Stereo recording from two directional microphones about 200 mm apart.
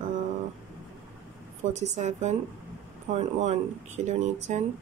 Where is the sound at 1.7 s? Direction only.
35° right (ahead or behind).